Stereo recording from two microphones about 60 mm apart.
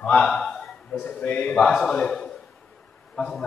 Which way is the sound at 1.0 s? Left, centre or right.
Left.